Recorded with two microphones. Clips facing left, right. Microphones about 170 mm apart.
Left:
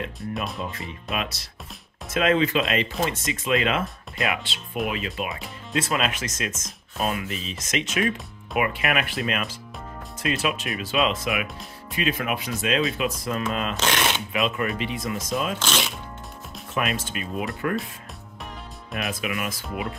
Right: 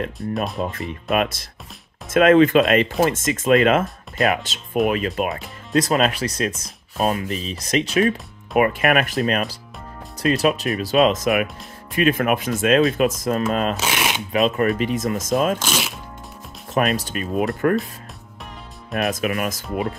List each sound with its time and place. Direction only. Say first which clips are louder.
0.2 s speech: right 5 dB; centre (ahead or behind)
0.6 s speech: right 7 dB; 50° right (ahead or behind)
13.7 s speech: right 1 dB; 10° right (ahead or behind)
14.3 s speech: right 7 dB; 40° right (ahead or behind)
15.6 s speech: right 1 dB; 5° right (ahead or behind)
16.7 s speech: right 6 dB; 40° right (ahead or behind)
19.0 s speech: right 6 dB; 40° right (ahead or behind)